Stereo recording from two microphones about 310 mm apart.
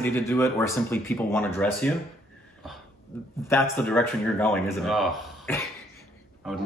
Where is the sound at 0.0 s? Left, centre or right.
Centre.